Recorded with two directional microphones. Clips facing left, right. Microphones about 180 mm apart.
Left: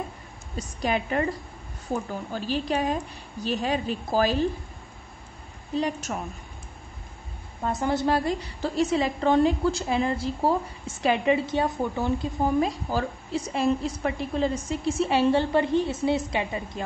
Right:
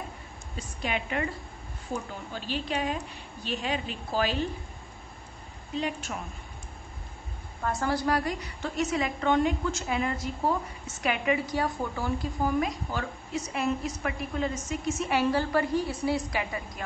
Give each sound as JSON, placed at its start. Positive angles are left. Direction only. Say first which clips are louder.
{"t": 0.6, "sound": "a woman's voice", "louder": "left 6 dB", "side_deg": 40}
{"t": 2.3, "sound": "a woman's voice", "louder": "left 5 dB", "side_deg": 40}
{"t": 5.8, "sound": "a woman's voice", "louder": "left 4 dB", "side_deg": 40}
{"t": 7.8, "sound": "a woman's voice", "louder": "left 4 dB", "side_deg": 25}